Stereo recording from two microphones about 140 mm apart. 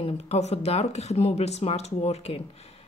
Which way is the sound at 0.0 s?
50° left (ahead or behind).